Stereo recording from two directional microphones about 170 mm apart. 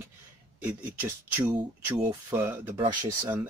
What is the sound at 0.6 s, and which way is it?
Speech, 10° right (ahead or behind).